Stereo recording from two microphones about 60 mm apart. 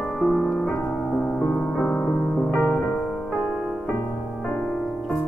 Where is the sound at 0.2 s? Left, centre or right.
Centre.